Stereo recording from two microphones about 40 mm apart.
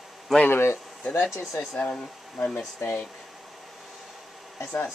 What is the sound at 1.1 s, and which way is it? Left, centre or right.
Speech, left.